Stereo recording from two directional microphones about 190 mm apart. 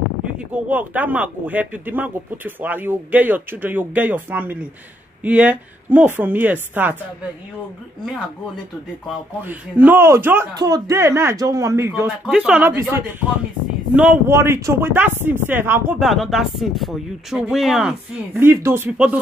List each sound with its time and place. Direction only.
0.7 s speech: 10° right (ahead or behind)
9.4 s speech: 10° right (ahead or behind)
12.0 s speech: 5° right (ahead or behind)
13.9 s speech: 10° right (ahead or behind)
16.0 s speech: centre (ahead or behind)